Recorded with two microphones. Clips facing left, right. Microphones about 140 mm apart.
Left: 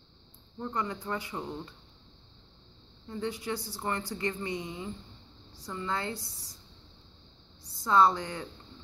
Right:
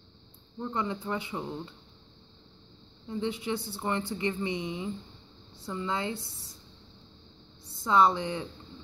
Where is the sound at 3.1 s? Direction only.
20° right (ahead or behind).